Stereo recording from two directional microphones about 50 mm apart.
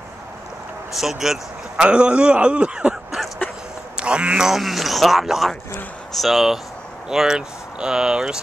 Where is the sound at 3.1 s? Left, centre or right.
Centre.